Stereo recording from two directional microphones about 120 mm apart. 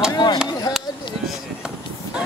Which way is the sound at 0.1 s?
35° left (ahead or behind).